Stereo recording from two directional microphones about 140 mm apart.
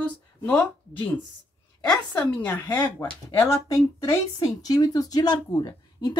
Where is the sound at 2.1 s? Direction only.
10° left (ahead or behind).